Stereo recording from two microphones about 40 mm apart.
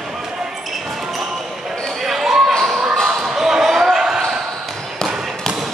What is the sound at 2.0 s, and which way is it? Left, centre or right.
Basketball bounce, centre.